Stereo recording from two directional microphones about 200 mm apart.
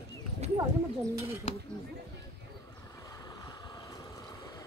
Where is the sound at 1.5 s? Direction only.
35° left (ahead or behind).